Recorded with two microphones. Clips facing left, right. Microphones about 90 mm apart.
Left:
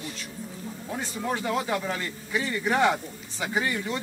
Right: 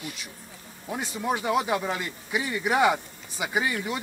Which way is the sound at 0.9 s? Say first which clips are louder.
Right 2 dB; 15° right (ahead or behind).